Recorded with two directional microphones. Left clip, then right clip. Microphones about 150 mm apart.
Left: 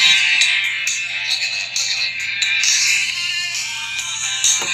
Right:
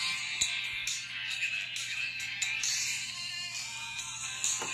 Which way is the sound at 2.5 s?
55° left (ahead or behind).